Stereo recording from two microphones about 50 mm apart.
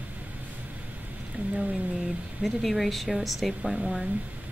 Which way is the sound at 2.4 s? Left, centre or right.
Centre.